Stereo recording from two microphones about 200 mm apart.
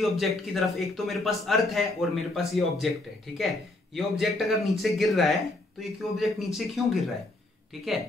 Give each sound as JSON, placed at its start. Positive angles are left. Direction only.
{"t": 0.0, "sound": "speech", "side_deg": 0}